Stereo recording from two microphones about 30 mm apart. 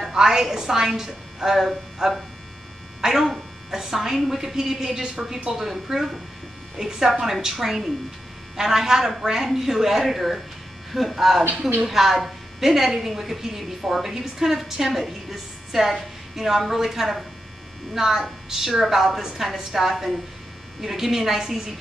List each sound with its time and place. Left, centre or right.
0.0 s a woman's voice: centre